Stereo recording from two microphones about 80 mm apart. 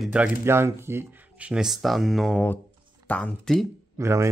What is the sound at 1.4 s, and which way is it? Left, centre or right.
Speech, centre.